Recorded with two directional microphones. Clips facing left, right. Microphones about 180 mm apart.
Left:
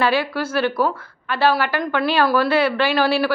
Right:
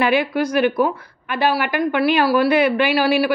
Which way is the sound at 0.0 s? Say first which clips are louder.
Right 2 dB; 15° right (ahead or behind).